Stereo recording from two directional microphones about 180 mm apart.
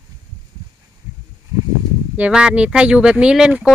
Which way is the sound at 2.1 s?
5° right (ahead or behind).